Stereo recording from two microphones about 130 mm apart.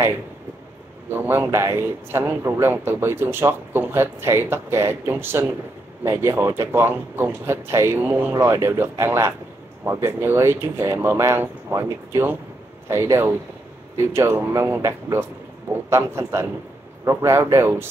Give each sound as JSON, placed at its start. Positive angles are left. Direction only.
{"t": 1.1, "sound": "a man's voice", "side_deg": -15}